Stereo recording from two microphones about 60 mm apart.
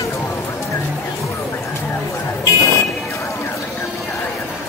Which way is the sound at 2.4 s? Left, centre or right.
Left.